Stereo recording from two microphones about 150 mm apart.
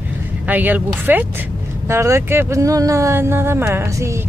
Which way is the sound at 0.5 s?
10° right (ahead or behind).